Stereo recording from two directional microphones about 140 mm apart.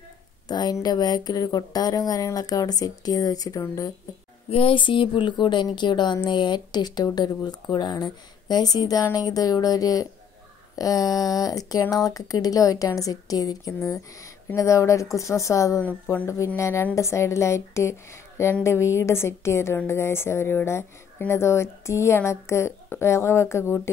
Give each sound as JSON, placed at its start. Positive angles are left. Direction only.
{"t": 0.5, "sound": "a woman's voice", "side_deg": 30}
{"t": 4.5, "sound": "a woman's voice", "side_deg": 40}